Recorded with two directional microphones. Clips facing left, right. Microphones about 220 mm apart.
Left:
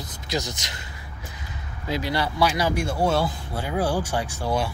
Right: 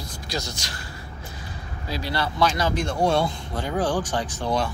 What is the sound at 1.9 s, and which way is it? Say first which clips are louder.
Speech: left 2 dB; 15° left (ahead or behind).